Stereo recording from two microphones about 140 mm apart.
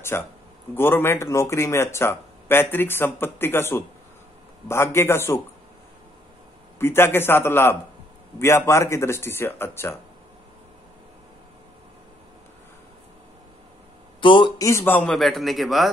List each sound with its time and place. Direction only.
0.1 s speech: 15° left (ahead or behind)
6.8 s speech: 15° left (ahead or behind)
14.2 s a man's voice: 35° left (ahead or behind)
14.6 s a man's voice: 20° left (ahead or behind); by 15.9 s centre (ahead or behind)